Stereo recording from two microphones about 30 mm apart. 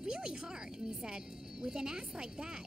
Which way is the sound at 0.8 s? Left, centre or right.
Right.